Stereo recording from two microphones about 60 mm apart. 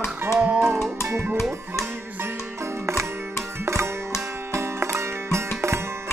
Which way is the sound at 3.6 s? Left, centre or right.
Right.